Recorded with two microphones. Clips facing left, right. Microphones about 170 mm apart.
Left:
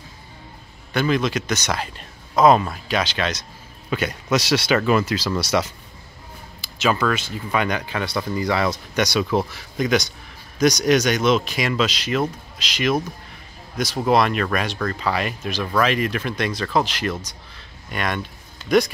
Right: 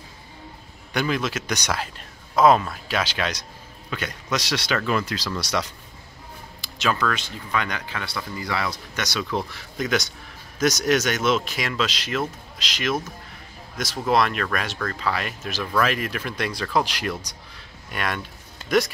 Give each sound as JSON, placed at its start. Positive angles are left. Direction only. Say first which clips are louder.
{"t": 0.9, "sound": "speech", "louder": "left 4 dB", "side_deg": -5}
{"t": 3.9, "sound": "speech", "louder": "left 6 dB", "side_deg": 10}
{"t": 9.5, "sound": "speech", "louder": "left 4 dB", "side_deg": 0}
{"t": 14.0, "sound": "speech", "louder": "left 3 dB", "side_deg": 0}